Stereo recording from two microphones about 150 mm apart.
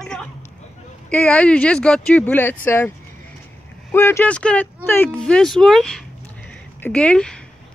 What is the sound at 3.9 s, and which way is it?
Speech, 15° left (ahead or behind).